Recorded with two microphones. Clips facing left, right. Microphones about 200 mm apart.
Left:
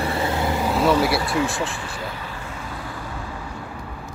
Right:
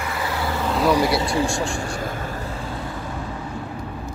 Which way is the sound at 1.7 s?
45° right (ahead or behind).